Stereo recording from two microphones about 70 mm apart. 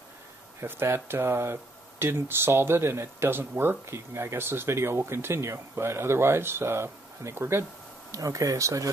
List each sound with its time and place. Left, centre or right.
0.6 s speech: right
8.1 s speech: right